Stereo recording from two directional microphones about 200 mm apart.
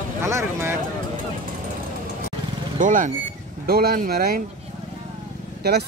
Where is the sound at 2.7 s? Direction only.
40° right (ahead or behind).